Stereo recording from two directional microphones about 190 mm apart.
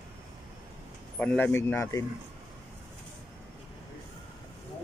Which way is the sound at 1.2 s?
10° left (ahead or behind).